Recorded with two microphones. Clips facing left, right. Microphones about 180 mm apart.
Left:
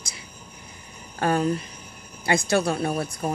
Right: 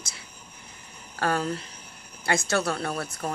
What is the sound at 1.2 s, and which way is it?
Speech, 20° left (ahead or behind).